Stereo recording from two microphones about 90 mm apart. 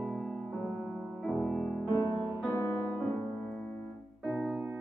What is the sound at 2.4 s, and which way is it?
Music, 20° left (ahead or behind).